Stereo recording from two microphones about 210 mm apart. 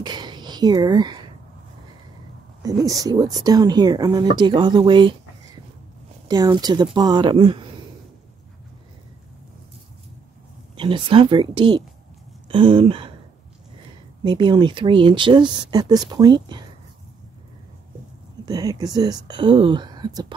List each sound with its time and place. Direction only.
0.0 s a sound: 20° right (ahead or behind)
2.9 s speech: 15° right (ahead or behind)
6.2 s speech: 20° right (ahead or behind)
10.8 s speech: 25° right (ahead or behind)
14.2 s speech: 20° right (ahead or behind)
18.4 s speech: 15° right (ahead or behind)